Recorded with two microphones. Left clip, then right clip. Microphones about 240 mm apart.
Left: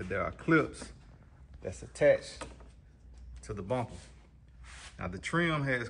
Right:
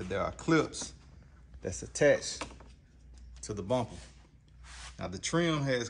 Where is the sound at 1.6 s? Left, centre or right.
Right.